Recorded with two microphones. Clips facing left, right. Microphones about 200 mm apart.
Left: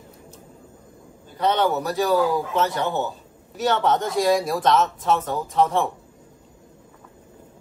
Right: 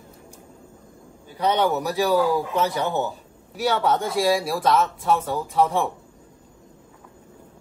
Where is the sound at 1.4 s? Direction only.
15° right (ahead or behind).